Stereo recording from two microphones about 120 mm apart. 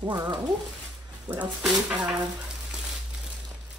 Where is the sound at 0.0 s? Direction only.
40° right (ahead or behind).